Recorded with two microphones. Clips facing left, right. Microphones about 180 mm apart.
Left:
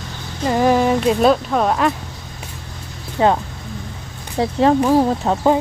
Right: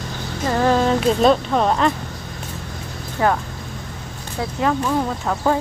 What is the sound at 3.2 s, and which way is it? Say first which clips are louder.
Speech: left 3 dB; 20° left (ahead or behind).